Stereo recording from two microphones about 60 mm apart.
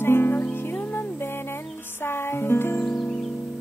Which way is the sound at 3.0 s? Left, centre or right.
Centre.